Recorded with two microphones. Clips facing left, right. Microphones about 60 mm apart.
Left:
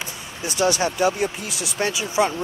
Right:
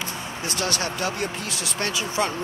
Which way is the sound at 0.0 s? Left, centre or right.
Centre.